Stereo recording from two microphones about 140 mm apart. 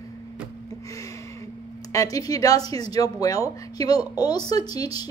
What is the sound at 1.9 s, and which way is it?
A woman's voice, 25° left (ahead or behind).